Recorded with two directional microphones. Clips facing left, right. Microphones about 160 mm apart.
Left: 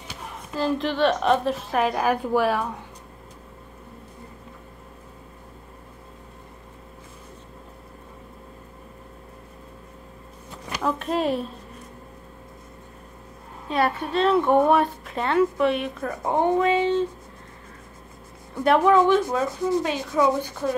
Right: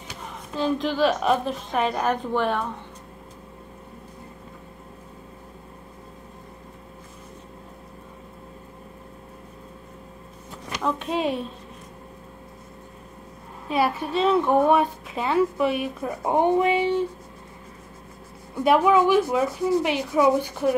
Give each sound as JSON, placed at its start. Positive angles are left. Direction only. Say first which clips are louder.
{"t": 0.6, "sound": "a woman's voice", "louder": "even", "side_deg": 0}
{"t": 10.8, "sound": "a sound", "louder": "left 1 dB", "side_deg": 0}
{"t": 13.7, "sound": "a woman's voice", "louder": "even", "side_deg": -5}
{"t": 16.1, "sound": "speech", "louder": "right 1 dB", "side_deg": -15}
{"t": 18.6, "sound": "speech", "louder": "even", "side_deg": -5}